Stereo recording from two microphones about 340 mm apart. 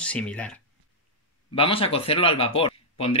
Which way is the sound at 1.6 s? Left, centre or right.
Centre.